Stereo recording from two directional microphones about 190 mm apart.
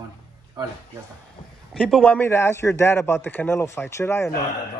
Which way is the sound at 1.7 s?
5° left (ahead or behind).